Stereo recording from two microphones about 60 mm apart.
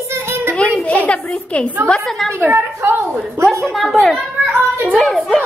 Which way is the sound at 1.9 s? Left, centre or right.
Centre.